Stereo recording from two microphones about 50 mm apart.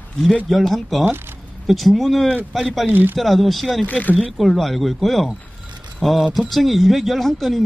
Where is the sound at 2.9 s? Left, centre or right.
Right.